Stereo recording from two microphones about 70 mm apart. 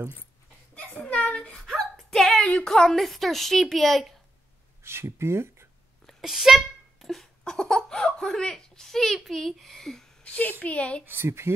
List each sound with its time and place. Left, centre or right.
0.7 s a sound: centre
1.7 s a woman's voice: centre
4.8 s speech: right
6.0 s speech: centre
10.2 s a woman's voice: centre
11.1 s speech: right